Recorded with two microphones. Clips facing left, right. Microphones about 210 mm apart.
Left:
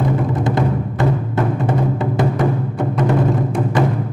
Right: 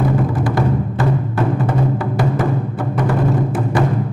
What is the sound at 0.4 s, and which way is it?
Music, 20° left (ahead or behind).